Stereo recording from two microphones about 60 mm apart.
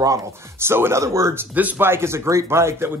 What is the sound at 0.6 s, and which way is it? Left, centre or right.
Speech, right.